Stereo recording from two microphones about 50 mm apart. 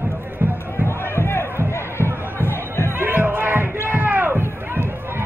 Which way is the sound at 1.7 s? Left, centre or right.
Left.